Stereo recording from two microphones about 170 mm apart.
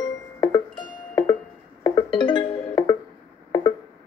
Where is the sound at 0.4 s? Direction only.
25° left (ahead or behind).